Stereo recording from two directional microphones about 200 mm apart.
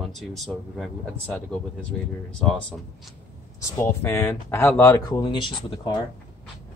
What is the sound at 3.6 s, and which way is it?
Speech, 15° left (ahead or behind).